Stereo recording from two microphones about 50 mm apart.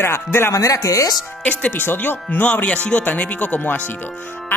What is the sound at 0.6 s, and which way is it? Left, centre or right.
Speech, left.